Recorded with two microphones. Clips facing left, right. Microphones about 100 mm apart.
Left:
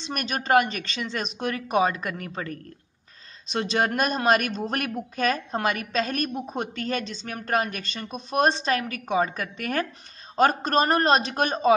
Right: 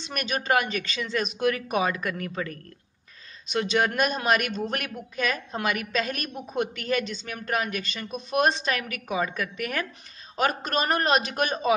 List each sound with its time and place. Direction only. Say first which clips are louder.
0.0 s speech: even; 35° left (ahead or behind)